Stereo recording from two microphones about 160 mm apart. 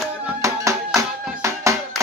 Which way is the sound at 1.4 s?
20° right (ahead or behind).